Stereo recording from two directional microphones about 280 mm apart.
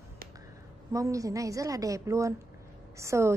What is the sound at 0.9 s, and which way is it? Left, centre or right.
A woman's voice, centre.